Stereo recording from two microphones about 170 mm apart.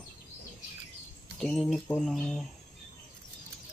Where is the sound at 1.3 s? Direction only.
Centre (ahead or behind).